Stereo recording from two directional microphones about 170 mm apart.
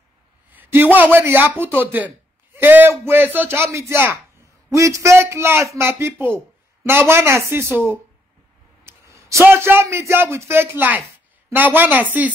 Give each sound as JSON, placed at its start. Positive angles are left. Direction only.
{"t": 0.5, "sound": "a man's voice", "side_deg": -10}